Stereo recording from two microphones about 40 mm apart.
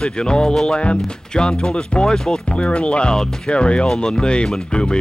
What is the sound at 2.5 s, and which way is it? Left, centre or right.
Speech, left.